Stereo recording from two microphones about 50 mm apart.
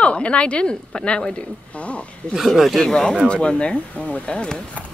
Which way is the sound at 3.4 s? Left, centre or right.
Centre.